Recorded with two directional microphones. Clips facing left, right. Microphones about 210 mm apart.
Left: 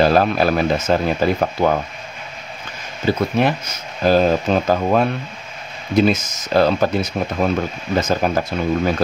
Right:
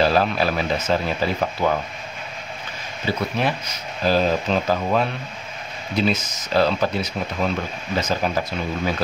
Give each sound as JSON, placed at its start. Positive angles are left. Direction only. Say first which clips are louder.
{"t": 0.0, "sound": "speech", "louder": "left 4 dB", "side_deg": 50}
{"t": 3.1, "sound": "speech", "louder": "left 6 dB", "side_deg": 50}